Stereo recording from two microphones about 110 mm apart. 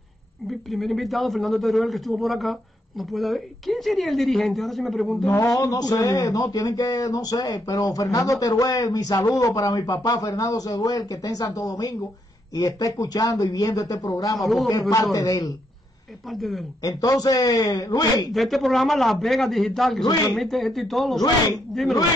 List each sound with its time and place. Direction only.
0.5 s a woman's voice: centre (ahead or behind)
5.3 s a man's voice: 30° left (ahead or behind)
14.3 s a woman's voice: centre (ahead or behind)
14.7 s a man's voice: 30° left (ahead or behind)
16.3 s a woman's voice: centre (ahead or behind)
16.8 s a man's voice: 35° left (ahead or behind)
18.3 s a woman's voice: centre (ahead or behind)